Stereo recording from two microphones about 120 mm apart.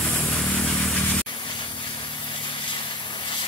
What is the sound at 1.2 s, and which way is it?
Vehicle, 40° left (ahead or behind).